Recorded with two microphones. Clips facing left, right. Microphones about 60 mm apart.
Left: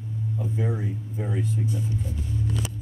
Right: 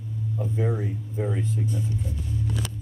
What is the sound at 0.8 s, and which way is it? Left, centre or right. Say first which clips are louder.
Speech: right 2 dB; centre.